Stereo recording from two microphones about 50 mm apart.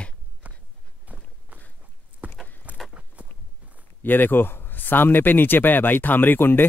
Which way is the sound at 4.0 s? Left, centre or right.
Left.